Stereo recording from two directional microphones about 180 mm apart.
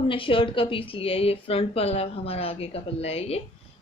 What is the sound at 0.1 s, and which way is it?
Speech, 30° left (ahead or behind).